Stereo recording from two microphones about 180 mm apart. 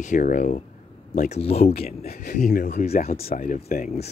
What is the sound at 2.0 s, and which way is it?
Speech, 60° left (ahead or behind).